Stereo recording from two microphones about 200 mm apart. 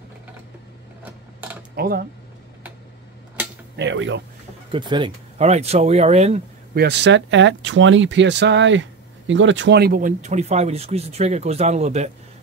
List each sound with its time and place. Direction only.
1.8 s speech: 50° right (ahead or behind)
3.7 s speech: 65° right (ahead or behind)
4.7 s speech: 25° right (ahead or behind)
6.7 s speech: 55° right (ahead or behind); by 12.1 s 35° right (ahead or behind)